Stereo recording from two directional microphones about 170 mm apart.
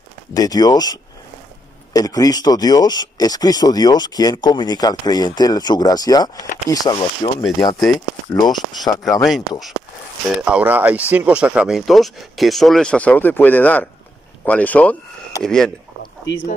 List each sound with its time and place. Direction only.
0.3 s speech: 20° left (ahead or behind)
2.0 s speech: 20° left (ahead or behind)
9.0 s speech: centre (ahead or behind)
16.0 s a sound: 90° left